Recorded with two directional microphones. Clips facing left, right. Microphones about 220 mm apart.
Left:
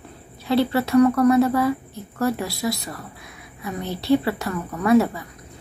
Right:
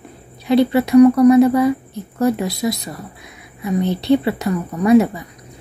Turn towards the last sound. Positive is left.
turn(degrees=-20)  # may be behind; listen again after turning